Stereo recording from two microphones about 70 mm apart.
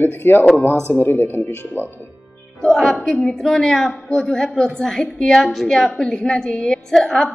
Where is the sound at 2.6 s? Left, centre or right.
Centre.